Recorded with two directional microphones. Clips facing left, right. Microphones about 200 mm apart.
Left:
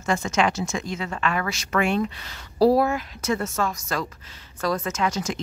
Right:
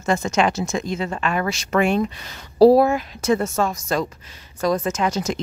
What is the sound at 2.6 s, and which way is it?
Speech, 25° right (ahead or behind).